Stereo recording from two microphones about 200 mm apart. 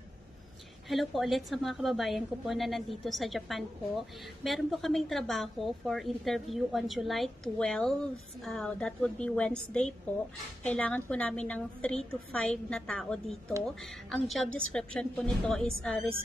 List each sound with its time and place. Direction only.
0.8 s a woman's voice: centre (ahead or behind)